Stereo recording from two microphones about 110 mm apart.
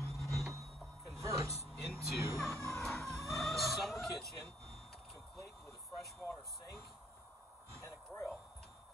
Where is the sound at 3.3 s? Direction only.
Centre (ahead or behind).